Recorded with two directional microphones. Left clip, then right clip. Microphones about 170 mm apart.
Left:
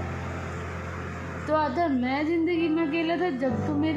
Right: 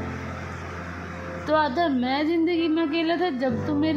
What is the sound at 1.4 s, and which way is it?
A woman's voice, 25° right (ahead or behind).